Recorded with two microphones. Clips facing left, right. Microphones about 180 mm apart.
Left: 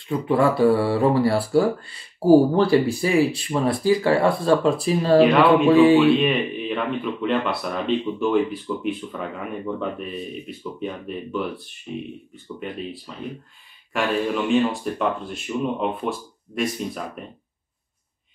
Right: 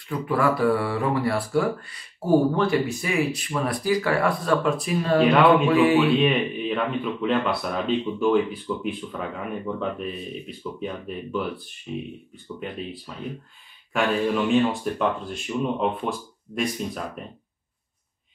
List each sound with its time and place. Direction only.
0.1 s speech: 25° left (ahead or behind)
5.9 s speech: centre (ahead or behind)
13.9 s speech: centre (ahead or behind)